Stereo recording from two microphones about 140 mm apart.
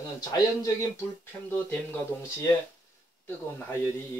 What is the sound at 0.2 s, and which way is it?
Speech, 25° left (ahead or behind).